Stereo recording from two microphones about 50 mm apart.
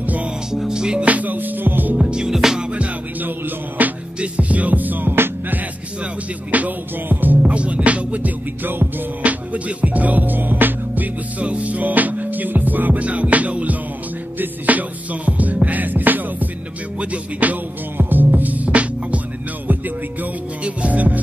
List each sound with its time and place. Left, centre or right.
0.0 s music: right
0.5 s music: centre
1.0 s music: right
2.0 s music: centre
2.7 s music: right
3.3 s music: right
6.5 s music: right
7.5 s music: right
17.9 s music: right
20.6 s music: right